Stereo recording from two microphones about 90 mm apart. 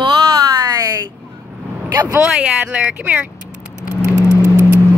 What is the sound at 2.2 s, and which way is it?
Speech, 15° right (ahead or behind).